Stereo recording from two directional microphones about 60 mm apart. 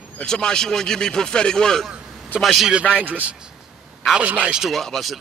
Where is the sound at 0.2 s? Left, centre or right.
Centre.